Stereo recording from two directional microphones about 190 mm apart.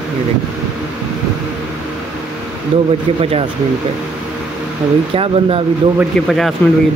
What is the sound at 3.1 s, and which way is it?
Speech, 30° right (ahead or behind).